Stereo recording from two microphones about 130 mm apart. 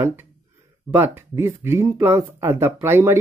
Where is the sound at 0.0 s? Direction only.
20° right (ahead or behind).